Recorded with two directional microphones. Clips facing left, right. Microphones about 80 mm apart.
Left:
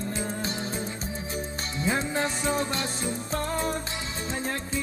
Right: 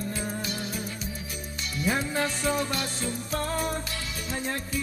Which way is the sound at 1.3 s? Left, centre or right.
Left.